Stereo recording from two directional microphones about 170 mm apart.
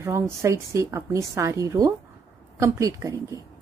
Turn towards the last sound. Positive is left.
turn(degrees=-15)  # may be behind; listen again after turning